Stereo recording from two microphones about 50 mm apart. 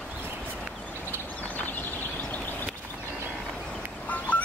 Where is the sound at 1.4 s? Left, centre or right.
Left.